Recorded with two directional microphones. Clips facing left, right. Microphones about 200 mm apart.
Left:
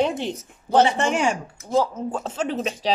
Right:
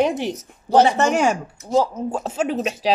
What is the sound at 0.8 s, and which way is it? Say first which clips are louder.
Speech: right 4 dB; 40° right (ahead or behind).